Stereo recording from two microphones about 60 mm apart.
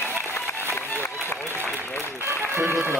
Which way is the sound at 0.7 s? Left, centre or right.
Left.